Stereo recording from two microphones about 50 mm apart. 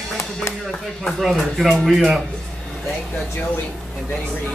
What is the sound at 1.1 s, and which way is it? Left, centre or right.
Speech, centre.